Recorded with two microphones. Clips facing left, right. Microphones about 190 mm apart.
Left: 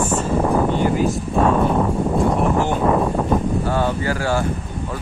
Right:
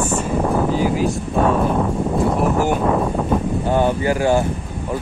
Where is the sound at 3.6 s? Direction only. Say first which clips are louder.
Right 3 dB; 20° right (ahead or behind).